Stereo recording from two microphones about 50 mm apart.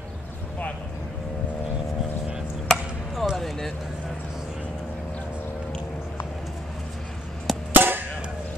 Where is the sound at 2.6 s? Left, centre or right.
Centre.